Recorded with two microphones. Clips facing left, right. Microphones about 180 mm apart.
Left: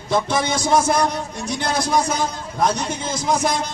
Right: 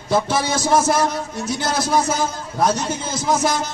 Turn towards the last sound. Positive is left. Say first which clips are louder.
# right 1 dB
turn(degrees=-5)  # may be behind; listen again after turning